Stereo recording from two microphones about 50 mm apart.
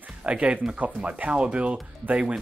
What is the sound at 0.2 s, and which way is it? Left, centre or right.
Speech, right.